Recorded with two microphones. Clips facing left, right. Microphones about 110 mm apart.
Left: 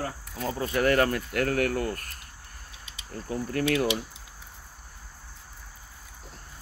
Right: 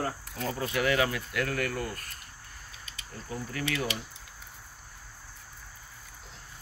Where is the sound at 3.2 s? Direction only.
55° left (ahead or behind).